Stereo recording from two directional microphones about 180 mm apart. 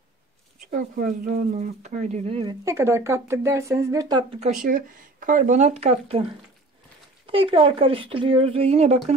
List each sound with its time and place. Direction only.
0.7 s speech: 45° right (ahead or behind)
1.5 s speech: 40° right (ahead or behind)
2.6 s speech: 15° right (ahead or behind)
4.6 s speech: 50° right (ahead or behind)
7.2 s speech: 30° right (ahead or behind)